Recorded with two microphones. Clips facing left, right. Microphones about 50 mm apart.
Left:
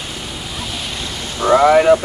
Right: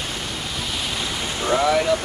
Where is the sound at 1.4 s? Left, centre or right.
Left.